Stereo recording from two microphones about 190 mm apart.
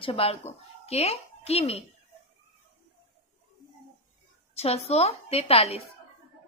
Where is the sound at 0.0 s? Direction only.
30° left (ahead or behind).